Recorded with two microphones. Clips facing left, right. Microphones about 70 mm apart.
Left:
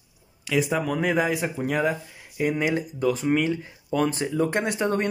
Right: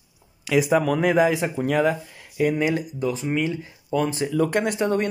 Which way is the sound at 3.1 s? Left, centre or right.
Left.